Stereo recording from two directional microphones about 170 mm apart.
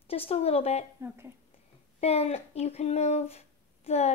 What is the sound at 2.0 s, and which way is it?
Speech, 40° left (ahead or behind).